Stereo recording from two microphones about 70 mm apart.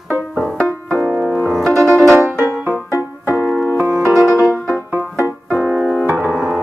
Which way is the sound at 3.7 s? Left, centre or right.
Right.